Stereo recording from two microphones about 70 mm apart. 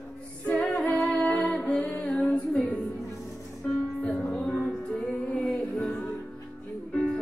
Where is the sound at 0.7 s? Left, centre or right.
Left.